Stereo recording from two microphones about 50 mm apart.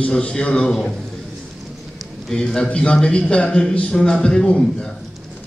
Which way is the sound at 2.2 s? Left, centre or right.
Centre.